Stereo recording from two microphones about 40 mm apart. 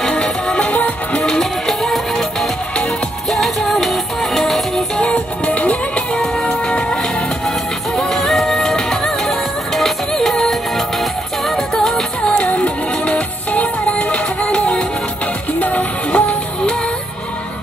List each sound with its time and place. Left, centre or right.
0.5 s music: left
1.2 s music: centre
3.3 s music: centre
5.0 s music: left
7.4 s music: centre
12.4 s music: left
14.1 s music: left
16.1 s music: left